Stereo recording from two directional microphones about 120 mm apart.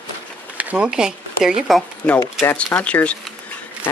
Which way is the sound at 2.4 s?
10° left (ahead or behind).